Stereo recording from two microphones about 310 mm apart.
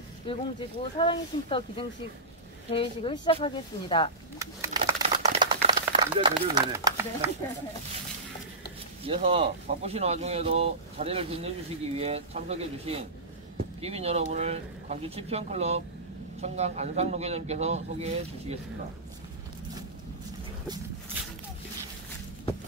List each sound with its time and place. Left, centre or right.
0.3 s speech: centre
4.4 s a sound: centre
9.0 s speech: centre